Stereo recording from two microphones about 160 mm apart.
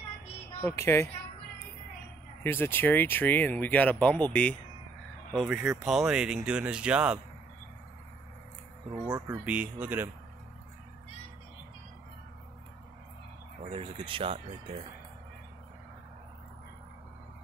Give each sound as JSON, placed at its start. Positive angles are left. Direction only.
{"t": 0.6, "sound": "speech", "side_deg": 15}
{"t": 2.4, "sound": "speech", "side_deg": 15}
{"t": 8.9, "sound": "speech", "side_deg": -25}
{"t": 9.5, "sound": "speech", "side_deg": -10}
{"t": 13.7, "sound": "speech", "side_deg": -35}